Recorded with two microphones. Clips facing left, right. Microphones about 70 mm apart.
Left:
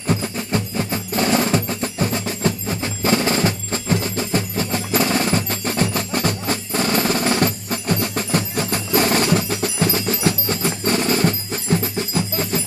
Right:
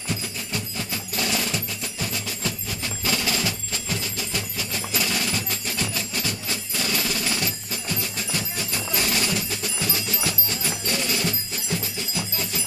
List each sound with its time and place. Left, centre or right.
0.0 s music: left